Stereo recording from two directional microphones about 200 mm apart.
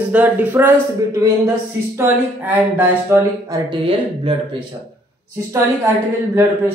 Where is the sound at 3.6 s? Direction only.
25° right (ahead or behind).